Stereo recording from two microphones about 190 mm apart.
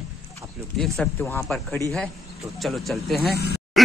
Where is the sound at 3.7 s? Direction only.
Centre (ahead or behind).